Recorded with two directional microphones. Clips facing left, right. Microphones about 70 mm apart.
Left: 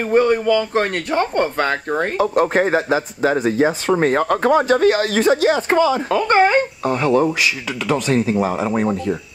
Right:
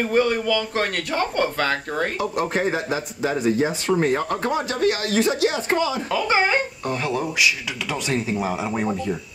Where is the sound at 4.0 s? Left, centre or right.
Left.